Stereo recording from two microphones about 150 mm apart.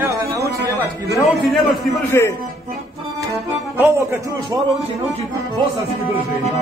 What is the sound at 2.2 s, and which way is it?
Speech, 15° left (ahead or behind).